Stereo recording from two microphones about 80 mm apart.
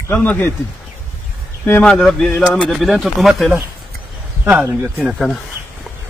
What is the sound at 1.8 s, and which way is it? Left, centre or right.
Speech, centre.